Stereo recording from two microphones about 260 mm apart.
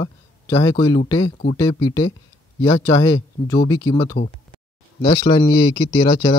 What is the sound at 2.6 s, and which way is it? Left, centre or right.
A man's voice, centre.